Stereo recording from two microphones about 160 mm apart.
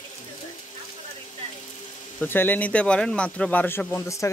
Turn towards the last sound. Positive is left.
turn(degrees=15)  # may be behind; listen again after turning